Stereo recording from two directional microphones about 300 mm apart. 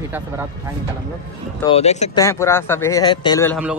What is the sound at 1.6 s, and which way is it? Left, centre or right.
Speech, centre.